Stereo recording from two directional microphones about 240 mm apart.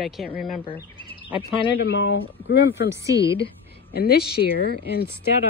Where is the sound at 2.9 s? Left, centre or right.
Centre.